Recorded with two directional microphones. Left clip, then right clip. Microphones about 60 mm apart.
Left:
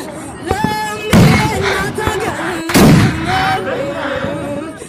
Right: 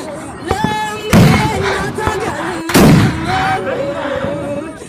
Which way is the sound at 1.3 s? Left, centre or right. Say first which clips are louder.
Even; left.